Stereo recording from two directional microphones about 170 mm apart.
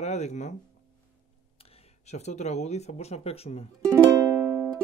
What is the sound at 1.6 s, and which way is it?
Speech, 40° left (ahead or behind).